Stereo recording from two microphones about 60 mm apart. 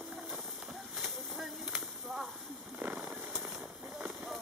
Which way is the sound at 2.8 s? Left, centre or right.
Right.